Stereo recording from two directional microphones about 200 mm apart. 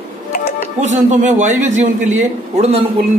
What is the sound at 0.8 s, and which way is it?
A man's voice, 35° right (ahead or behind).